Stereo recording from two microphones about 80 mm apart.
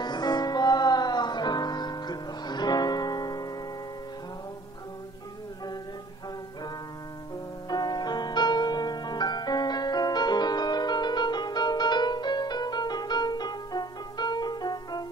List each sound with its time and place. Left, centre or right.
0.0 s music: left
7.7 s music: left